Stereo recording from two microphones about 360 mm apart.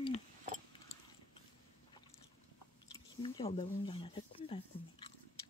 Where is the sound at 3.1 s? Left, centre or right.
Centre.